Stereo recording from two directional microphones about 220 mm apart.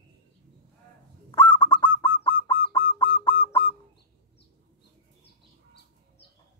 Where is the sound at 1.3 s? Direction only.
20° left (ahead or behind).